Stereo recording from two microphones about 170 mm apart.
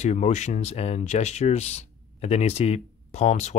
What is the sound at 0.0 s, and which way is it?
Speech, 45° left (ahead or behind).